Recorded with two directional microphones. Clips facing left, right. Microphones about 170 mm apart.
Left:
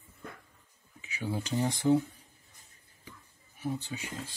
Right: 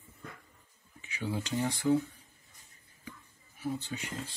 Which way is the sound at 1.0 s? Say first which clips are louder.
Even; 10° left (ahead or behind).